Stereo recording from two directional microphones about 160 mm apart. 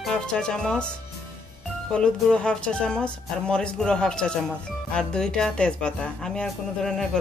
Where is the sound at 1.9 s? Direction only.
5° left (ahead or behind).